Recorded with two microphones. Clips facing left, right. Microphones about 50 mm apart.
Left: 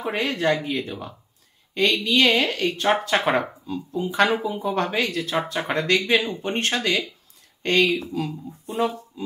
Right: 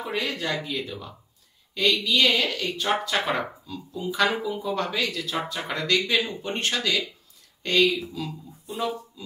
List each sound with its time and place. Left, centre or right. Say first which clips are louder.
0.0 s a woman's voice: left 5 dB; left